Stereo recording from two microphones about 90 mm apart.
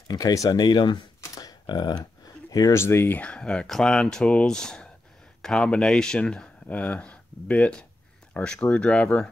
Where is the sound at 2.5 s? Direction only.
40° left (ahead or behind).